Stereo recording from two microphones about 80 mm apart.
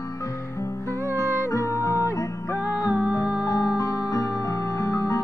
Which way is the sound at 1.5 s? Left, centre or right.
Left.